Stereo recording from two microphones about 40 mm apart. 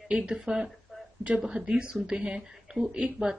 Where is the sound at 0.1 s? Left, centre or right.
Right.